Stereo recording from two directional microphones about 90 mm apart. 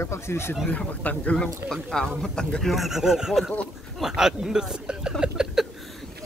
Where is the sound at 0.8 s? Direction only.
15° left (ahead or behind); by 5.6 s 5° right (ahead or behind).